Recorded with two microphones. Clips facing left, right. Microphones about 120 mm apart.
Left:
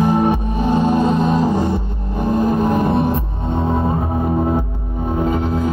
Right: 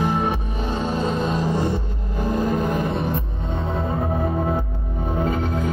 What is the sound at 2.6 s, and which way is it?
Music, 55° left (ahead or behind).